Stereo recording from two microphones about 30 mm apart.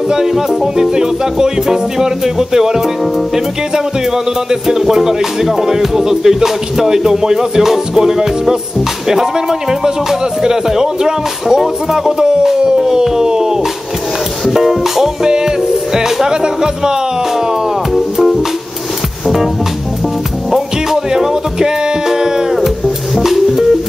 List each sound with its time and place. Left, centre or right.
0.1 s music: centre
4.7 s music: centre
9.1 s speech: centre
12.4 s howl: centre
14.5 s music: centre
15.2 s speech: centre
17.9 s music: centre
20.5 s music: centre
23.1 s music: centre